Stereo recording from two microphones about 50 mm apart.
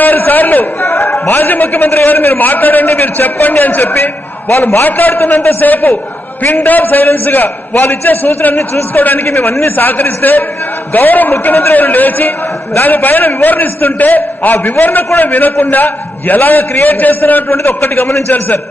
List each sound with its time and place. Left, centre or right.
0.0 s a man's voice: left